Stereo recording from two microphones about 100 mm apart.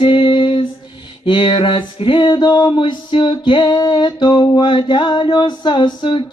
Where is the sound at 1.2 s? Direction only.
60° left (ahead or behind).